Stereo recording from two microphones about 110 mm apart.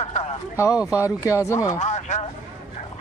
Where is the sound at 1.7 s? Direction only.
90° left.